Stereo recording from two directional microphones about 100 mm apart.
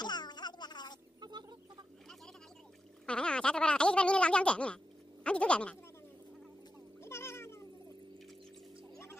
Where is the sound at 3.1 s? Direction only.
10° left (ahead or behind).